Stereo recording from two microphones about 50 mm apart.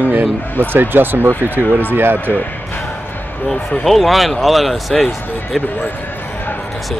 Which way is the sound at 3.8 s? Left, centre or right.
Centre.